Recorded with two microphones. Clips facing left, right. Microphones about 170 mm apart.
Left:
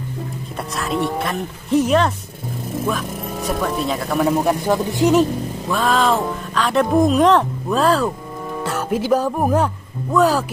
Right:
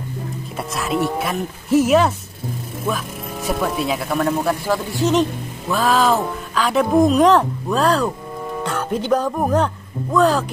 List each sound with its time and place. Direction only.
0.6 s speech: centre (ahead or behind)
4.5 s a man's voice: 20° left (ahead or behind)
5.7 s a man's voice: centre (ahead or behind)